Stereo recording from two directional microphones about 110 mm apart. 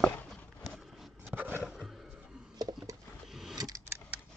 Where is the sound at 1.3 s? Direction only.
20° right (ahead or behind).